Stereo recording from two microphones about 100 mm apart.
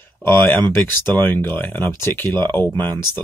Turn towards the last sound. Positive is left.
turn(degrees=20)  # may be behind; listen again after turning